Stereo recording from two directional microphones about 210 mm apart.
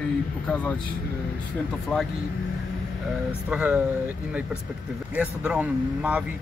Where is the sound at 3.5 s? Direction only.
5° right (ahead or behind).